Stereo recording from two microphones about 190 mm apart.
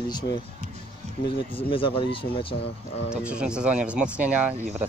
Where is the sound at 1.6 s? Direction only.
25° left (ahead or behind).